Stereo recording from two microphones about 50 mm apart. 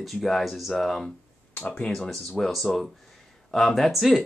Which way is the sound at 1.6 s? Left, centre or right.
Left.